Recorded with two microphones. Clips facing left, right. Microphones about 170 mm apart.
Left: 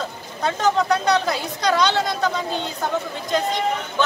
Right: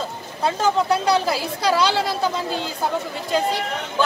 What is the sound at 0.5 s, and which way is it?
Speech, 5° right (ahead or behind).